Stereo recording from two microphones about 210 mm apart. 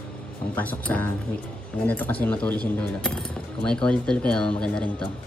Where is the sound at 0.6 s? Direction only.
10° left (ahead or behind).